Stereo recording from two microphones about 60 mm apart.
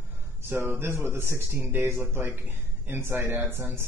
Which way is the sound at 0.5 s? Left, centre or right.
Right.